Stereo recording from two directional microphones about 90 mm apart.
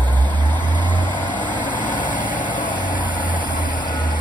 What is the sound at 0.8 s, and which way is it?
Vehicle, 60° left (ahead or behind).